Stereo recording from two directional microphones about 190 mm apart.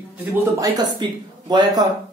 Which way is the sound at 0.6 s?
20° right (ahead or behind).